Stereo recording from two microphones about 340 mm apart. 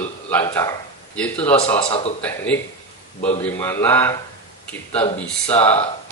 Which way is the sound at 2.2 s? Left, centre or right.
Centre.